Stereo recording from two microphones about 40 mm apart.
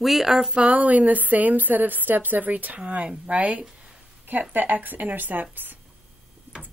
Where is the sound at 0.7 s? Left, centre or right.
Right.